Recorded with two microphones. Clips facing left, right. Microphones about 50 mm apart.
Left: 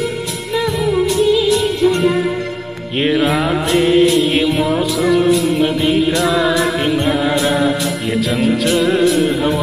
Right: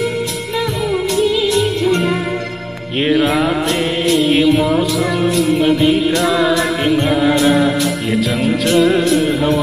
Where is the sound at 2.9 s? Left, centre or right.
Centre.